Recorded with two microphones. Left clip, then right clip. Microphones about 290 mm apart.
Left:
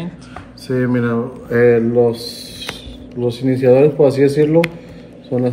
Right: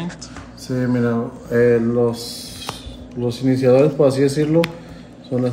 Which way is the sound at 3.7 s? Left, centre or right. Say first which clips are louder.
Left 3 dB; right.